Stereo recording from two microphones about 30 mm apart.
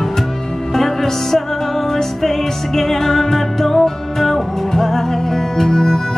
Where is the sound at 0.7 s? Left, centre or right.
Centre.